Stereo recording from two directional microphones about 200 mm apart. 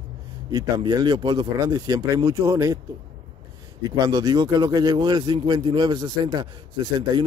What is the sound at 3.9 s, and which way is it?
A man's voice, 20° right (ahead or behind).